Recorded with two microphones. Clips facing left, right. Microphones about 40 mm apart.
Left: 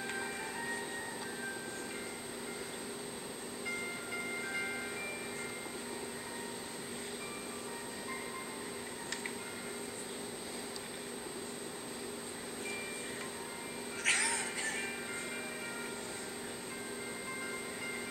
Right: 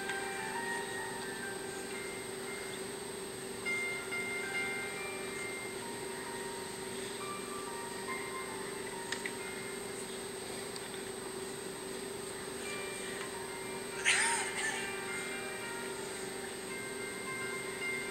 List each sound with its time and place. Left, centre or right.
4.5 s music: centre
14.0 s cat: right